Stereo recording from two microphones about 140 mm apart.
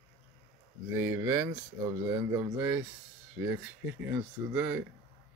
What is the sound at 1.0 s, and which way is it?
Speech, 20° right (ahead or behind).